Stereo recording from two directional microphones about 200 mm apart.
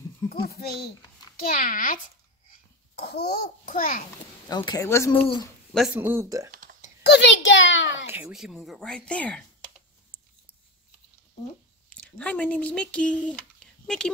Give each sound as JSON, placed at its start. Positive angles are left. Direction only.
{"t": 0.3, "sound": "a child's voice", "side_deg": 50}
{"t": 2.5, "sound": "a child's voice", "side_deg": 55}
{"t": 4.5, "sound": "speech", "side_deg": 20}
{"t": 5.1, "sound": "speech", "side_deg": 25}
{"t": 5.9, "sound": "speech", "side_deg": -10}
{"t": 6.5, "sound": "a sound", "side_deg": -45}
{"t": 7.0, "sound": "a child's voice", "side_deg": 60}
{"t": 8.1, "sound": "speech", "side_deg": -5}
{"t": 11.9, "sound": "speech", "side_deg": 5}